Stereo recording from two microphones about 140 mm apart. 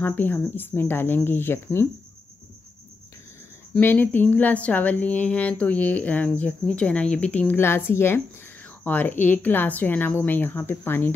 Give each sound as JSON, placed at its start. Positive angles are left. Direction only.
{"t": 0.0, "sound": "speech", "side_deg": 15}
{"t": 3.7, "sound": "speech", "side_deg": 10}